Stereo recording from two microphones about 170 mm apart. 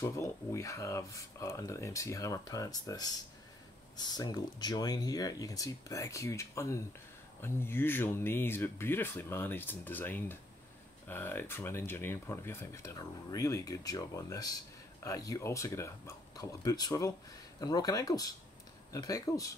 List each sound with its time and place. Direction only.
0.0 s speech: 15° left (ahead or behind)